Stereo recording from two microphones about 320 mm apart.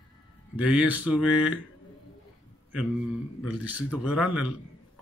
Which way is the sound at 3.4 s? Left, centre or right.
Centre.